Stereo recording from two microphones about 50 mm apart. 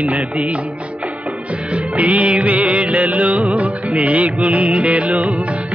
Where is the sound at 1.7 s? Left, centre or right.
Right.